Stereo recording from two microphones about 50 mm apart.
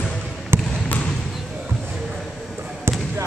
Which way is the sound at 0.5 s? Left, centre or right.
Right.